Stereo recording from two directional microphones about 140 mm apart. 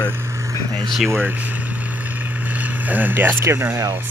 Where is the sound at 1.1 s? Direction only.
15° right (ahead or behind).